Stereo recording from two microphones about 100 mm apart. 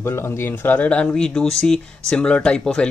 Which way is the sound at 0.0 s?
25° left (ahead or behind).